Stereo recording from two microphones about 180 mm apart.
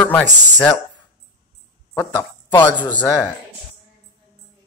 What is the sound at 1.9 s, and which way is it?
Speech, 15° left (ahead or behind).